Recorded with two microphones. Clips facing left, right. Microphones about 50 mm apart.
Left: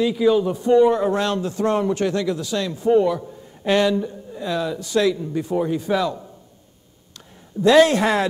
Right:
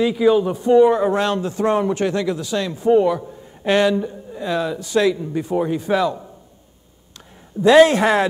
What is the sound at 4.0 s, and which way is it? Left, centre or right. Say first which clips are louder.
Speech: right 1 dB; right.